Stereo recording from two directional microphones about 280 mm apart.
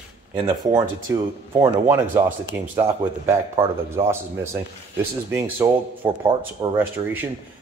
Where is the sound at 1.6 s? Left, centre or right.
Centre.